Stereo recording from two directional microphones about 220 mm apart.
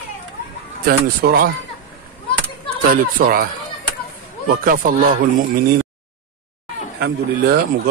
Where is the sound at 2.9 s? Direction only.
40° right (ahead or behind).